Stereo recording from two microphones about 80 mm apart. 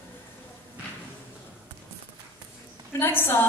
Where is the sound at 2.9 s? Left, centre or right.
Left.